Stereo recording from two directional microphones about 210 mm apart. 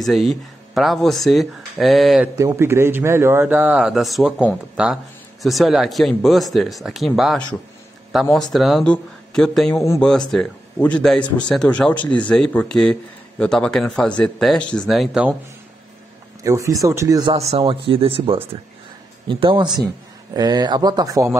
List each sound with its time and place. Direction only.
0.0 s speech: centre (ahead or behind)
2.3 s speech: 15° right (ahead or behind)
16.4 s speech: 15° right (ahead or behind)